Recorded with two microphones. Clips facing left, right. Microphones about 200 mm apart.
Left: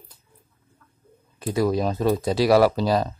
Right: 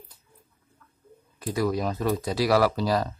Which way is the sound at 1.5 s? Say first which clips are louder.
Left 4 dB; 25° left (ahead or behind).